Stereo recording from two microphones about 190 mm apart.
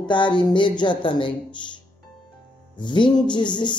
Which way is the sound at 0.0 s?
25° left (ahead or behind).